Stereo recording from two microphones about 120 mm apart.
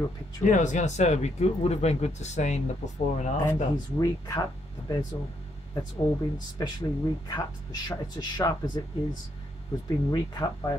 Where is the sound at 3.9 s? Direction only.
30° left (ahead or behind).